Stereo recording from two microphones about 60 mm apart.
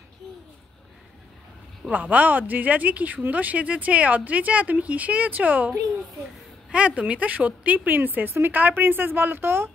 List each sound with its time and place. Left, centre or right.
1.9 s speech: right
6.7 s a woman's voice: right